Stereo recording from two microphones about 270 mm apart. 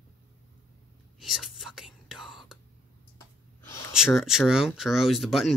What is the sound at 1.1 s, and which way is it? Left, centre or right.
Whispering, centre.